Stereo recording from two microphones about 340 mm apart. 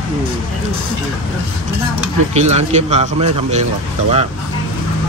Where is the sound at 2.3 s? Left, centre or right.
Centre.